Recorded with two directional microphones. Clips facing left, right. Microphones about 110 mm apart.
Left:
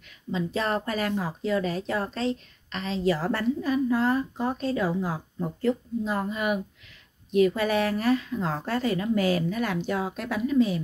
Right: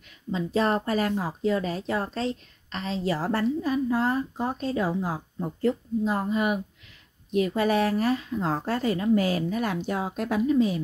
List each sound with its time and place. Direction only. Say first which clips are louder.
0.3 s a woman's voice: right 3 dB; 30° right (ahead or behind)